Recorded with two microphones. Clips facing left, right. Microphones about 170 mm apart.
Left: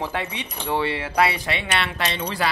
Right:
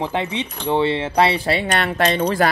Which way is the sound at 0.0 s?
20° right (ahead or behind).